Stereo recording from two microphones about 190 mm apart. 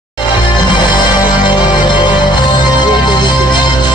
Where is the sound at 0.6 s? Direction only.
25° left (ahead or behind).